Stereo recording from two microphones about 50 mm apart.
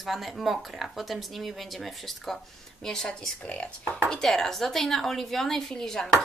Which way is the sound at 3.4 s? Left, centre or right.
Left.